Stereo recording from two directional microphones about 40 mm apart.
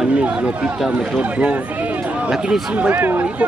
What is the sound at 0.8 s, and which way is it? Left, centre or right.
Speech, centre.